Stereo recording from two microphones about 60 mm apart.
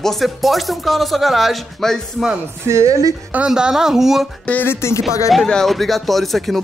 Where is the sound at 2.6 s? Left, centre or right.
Right.